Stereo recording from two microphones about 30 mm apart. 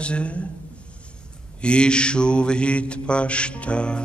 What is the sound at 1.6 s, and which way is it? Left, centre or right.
Music, left.